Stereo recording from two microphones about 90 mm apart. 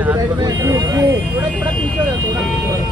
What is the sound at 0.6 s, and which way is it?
Speech, 40° right (ahead or behind).